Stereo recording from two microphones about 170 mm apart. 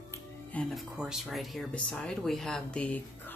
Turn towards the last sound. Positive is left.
turn(degrees=10)  # may be behind; listen again after turning